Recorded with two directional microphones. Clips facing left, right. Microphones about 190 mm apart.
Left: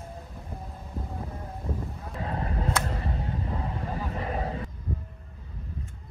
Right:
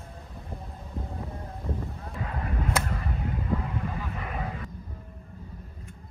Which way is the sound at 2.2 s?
30° left (ahead or behind).